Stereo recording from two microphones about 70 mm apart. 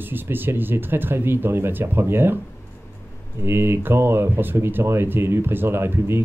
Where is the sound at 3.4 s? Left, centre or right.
Right.